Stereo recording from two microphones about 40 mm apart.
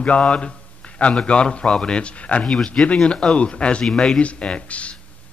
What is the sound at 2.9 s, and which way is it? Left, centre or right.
Speech, centre.